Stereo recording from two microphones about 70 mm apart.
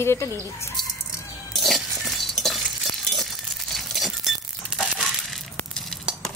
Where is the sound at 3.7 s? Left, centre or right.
Centre.